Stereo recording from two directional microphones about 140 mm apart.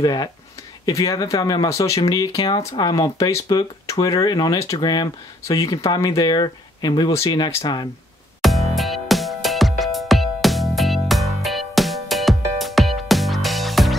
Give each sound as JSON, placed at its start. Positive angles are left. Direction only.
{"t": 0.0, "sound": "speech", "side_deg": 30}
{"t": 8.4, "sound": "music", "side_deg": 0}